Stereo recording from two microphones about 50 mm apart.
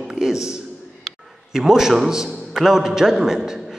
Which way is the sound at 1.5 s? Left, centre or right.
Centre.